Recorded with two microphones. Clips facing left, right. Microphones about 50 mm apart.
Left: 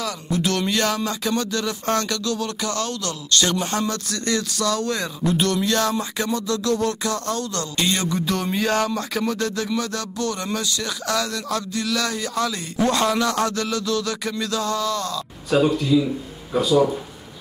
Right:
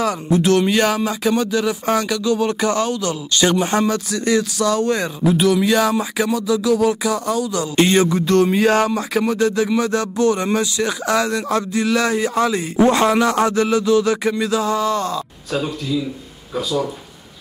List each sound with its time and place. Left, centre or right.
0.3 s speech: centre
5.2 s speech: centre
7.7 s music: right
8.5 s speech: centre
9.7 s speech: right
15.5 s speech: centre